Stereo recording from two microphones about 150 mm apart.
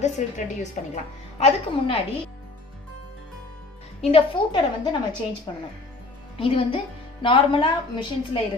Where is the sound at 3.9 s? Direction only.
40° left (ahead or behind).